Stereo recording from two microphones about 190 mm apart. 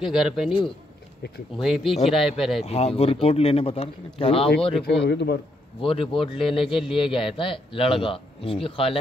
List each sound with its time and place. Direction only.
0.0 s speech: centre (ahead or behind)
1.6 s speech: centre (ahead or behind)
2.6 s speech: 35° left (ahead or behind)
4.8 s a man's voice: 60° left (ahead or behind)
5.8 s a man's voice: 30° left (ahead or behind)
6.7 s speech: centre (ahead or behind)
7.0 s a man's voice: 25° left (ahead or behind)